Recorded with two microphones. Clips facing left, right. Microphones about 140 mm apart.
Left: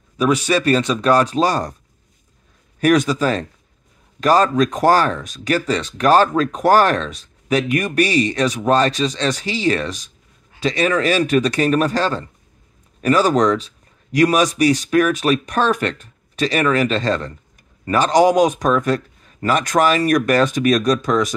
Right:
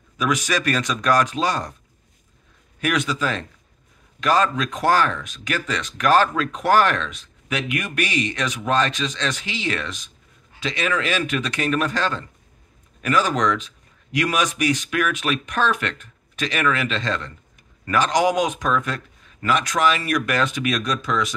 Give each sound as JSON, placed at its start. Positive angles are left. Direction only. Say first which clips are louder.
{"t": 0.2, "sound": "speech", "louder": "left 6 dB", "side_deg": 30}
{"t": 2.8, "sound": "speech", "louder": "left 8 dB", "side_deg": 40}